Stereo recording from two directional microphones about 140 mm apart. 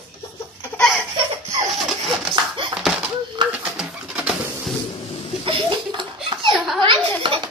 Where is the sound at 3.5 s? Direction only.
10° right (ahead or behind).